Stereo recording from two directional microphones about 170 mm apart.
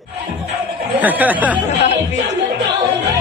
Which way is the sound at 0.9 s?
10° right (ahead or behind).